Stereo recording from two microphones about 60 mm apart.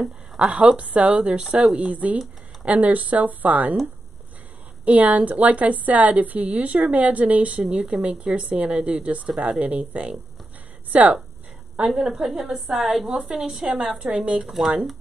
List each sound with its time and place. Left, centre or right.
0.4 s a woman's voice: centre
4.8 s a woman's voice: right
12.3 s a woman's voice: centre
14.4 s a woman's voice: centre